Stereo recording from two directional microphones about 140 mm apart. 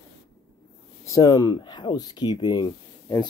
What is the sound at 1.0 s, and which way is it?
Speech, 25° left (ahead or behind).